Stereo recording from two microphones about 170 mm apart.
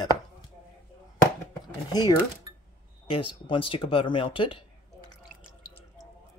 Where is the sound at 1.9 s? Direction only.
25° left (ahead or behind).